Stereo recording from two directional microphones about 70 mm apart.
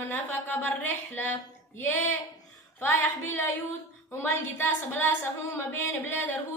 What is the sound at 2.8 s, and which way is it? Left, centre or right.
Child singing, left.